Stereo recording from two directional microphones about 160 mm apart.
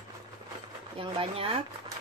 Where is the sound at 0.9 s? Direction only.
35° right (ahead or behind).